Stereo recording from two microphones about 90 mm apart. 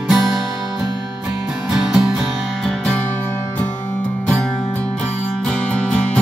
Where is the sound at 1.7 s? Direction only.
5° right (ahead or behind).